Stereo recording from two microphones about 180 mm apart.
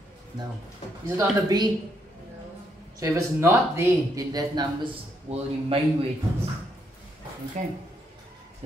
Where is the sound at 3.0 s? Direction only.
15° right (ahead or behind); by 6.1 s 35° right (ahead or behind).